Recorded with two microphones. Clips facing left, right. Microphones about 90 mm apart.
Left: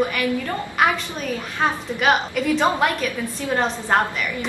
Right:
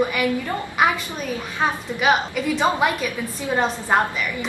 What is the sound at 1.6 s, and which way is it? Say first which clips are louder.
A woman's voice: left 1 dB; 5° right (ahead or behind).